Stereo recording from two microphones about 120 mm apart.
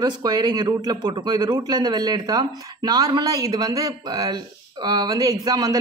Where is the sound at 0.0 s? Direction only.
35° right (ahead or behind).